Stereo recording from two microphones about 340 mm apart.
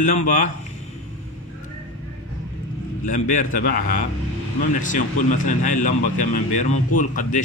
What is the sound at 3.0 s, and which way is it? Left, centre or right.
Speech, left.